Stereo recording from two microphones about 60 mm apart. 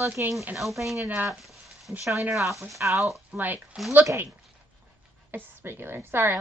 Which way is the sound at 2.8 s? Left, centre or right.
Right.